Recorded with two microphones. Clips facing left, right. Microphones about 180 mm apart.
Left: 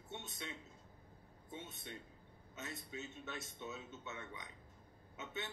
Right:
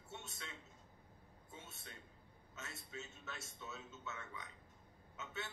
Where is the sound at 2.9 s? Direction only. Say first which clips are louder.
Left 2 dB; 15° left (ahead or behind).